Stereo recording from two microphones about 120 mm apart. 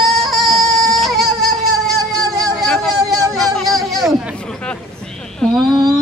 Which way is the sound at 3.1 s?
30° right (ahead or behind).